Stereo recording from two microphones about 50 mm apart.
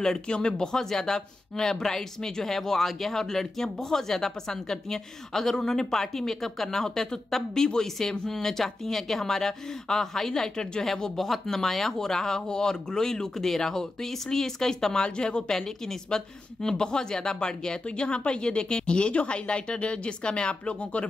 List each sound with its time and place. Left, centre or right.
0.0 s speech: centre